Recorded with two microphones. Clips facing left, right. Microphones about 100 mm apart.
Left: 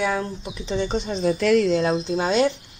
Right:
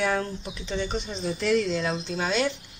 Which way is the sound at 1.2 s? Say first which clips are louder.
Left 6 dB; 60° left (ahead or behind).